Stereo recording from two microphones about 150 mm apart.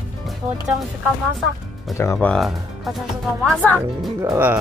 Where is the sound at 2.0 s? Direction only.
15° left (ahead or behind).